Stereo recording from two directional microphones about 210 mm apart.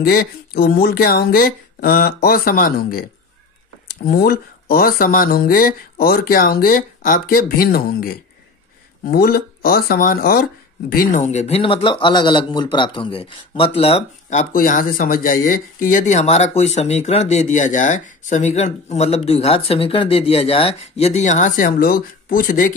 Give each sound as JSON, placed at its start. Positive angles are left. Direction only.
{"t": 0.0, "sound": "speech", "side_deg": 45}
{"t": 14.5, "sound": "speech", "side_deg": 40}